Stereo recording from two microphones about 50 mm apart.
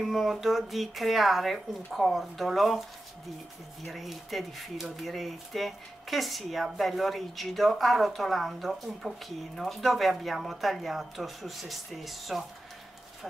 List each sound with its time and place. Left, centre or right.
0.0 s speech: centre
3.8 s speech: centre